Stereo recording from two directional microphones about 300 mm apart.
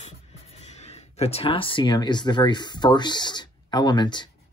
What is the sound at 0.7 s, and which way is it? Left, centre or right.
Speech, left.